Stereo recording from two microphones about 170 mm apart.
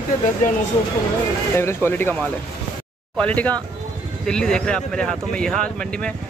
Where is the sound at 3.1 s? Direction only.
5° left (ahead or behind).